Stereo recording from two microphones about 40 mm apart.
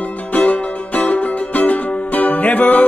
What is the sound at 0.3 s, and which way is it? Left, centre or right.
Music, left.